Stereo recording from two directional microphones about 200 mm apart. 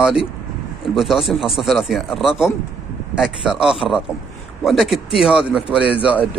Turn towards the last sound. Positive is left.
turn(degrees=-5)  # may be behind; listen again after turning